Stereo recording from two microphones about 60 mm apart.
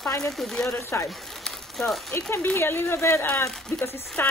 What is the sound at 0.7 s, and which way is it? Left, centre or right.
Speech, left.